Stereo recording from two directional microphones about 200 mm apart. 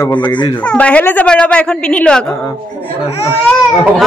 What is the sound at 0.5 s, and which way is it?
A woman's voice, 5° left (ahead or behind).